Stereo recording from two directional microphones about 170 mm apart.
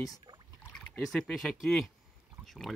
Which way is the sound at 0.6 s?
5° left (ahead or behind).